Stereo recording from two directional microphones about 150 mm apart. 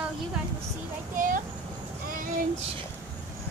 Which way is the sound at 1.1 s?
65° right (ahead or behind).